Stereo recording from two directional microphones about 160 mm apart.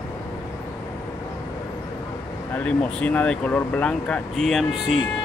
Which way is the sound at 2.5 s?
10° left (ahead or behind).